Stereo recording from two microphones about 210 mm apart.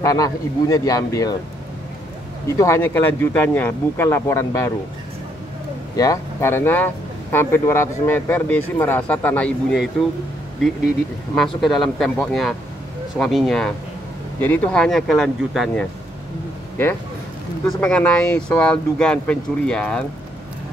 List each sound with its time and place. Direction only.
0.0 s speech: 15° left (ahead or behind)
2.4 s speech: 15° left (ahead or behind)
5.9 s speech: 15° left (ahead or behind)
11.3 s speech: centre (ahead or behind)
17.6 s speech: 5° left (ahead or behind)